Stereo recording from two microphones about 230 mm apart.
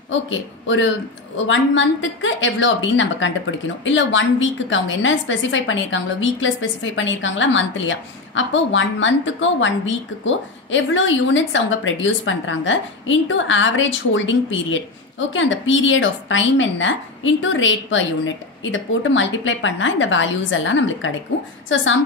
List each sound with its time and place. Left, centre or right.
0.1 s a woman's voice: left